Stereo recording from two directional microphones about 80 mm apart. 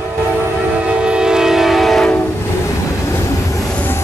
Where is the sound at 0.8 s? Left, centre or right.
Centre.